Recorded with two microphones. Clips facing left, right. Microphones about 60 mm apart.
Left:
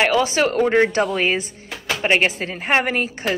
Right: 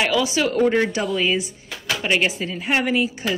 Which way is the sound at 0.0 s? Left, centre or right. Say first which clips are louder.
Left 3 dB; left.